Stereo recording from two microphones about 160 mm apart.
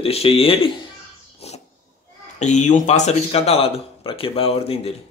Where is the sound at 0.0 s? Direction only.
35° left (ahead or behind).